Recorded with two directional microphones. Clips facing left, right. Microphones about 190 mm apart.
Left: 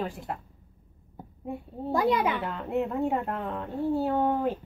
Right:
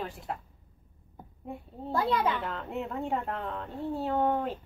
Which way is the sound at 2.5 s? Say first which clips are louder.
Left 6 dB; centre (ahead or behind).